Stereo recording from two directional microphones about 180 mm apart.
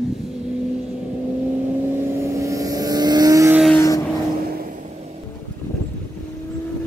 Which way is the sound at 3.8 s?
20° left (ahead or behind).